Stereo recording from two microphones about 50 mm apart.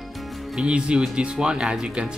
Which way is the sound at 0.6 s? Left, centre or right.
Centre.